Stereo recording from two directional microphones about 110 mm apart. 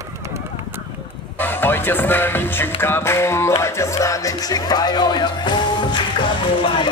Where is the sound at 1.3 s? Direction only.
20° left (ahead or behind).